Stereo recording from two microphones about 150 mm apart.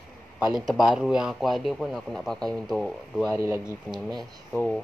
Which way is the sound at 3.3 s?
20° right (ahead or behind).